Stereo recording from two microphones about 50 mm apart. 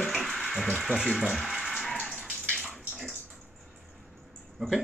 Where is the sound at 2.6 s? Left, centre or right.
Centre.